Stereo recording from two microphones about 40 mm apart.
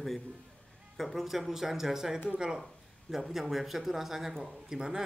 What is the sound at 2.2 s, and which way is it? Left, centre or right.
Speech, right.